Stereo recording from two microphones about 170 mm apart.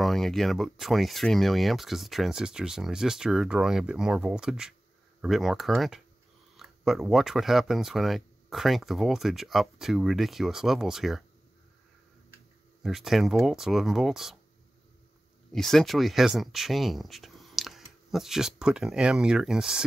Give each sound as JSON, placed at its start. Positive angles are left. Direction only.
{"t": 0.0, "sound": "speech", "side_deg": 0}
{"t": 12.8, "sound": "speech", "side_deg": 0}
{"t": 15.5, "sound": "speech", "side_deg": 0}